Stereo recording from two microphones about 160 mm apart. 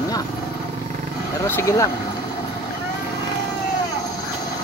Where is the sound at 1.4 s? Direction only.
15° left (ahead or behind).